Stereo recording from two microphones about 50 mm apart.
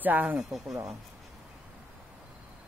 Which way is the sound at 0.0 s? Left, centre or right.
Right.